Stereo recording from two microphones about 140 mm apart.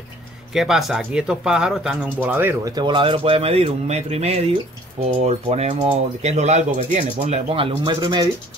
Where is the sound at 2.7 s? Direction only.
35° right (ahead or behind).